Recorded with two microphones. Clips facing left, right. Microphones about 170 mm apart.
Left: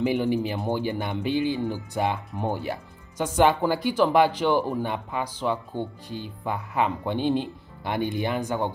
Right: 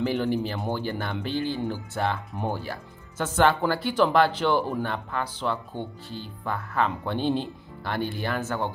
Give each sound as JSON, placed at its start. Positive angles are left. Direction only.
{"t": 0.0, "sound": "speech", "side_deg": 15}